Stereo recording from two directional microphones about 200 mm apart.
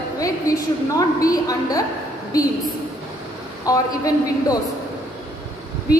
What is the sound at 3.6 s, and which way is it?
Speech, 15° left (ahead or behind).